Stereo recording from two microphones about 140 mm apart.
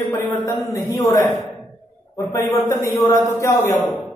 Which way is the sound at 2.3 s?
20° left (ahead or behind).